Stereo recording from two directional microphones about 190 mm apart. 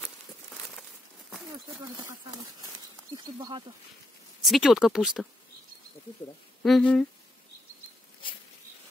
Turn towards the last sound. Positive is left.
turn(degrees=5)  # may be behind; listen again after turning